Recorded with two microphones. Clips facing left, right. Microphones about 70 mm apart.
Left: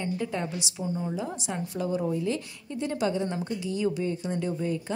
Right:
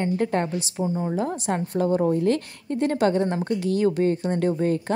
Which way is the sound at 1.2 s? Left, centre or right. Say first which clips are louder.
Right 7 dB; right.